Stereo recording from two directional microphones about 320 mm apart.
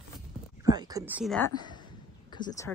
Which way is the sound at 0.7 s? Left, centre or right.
Centre.